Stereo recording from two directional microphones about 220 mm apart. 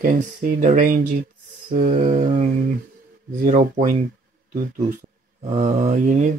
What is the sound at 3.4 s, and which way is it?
Speech, 35° right (ahead or behind).